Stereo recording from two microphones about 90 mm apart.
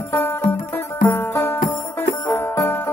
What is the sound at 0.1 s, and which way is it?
Music, 25° left (ahead or behind).